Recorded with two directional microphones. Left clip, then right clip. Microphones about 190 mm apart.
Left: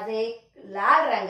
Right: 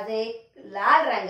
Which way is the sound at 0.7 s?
15° right (ahead or behind).